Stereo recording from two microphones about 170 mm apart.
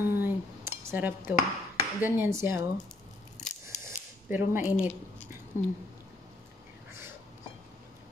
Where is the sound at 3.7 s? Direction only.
45° left (ahead or behind).